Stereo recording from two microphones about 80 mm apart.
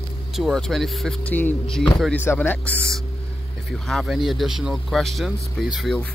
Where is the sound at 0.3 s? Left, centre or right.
Centre.